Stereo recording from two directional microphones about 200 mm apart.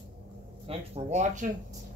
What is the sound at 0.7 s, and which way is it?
Speech, 30° right (ahead or behind).